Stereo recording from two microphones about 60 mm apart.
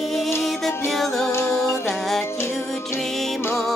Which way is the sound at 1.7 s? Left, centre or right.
Left.